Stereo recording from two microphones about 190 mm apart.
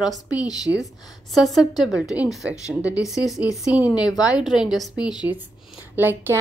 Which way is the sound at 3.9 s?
20° left (ahead or behind).